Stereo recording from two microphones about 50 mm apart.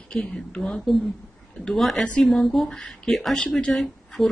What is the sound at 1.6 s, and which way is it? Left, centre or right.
Speech, centre.